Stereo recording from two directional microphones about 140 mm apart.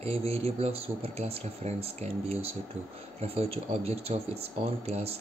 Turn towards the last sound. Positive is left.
turn(degrees=-50)  # may be behind; listen again after turning